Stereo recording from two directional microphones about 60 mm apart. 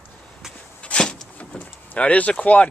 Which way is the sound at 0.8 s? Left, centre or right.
Centre.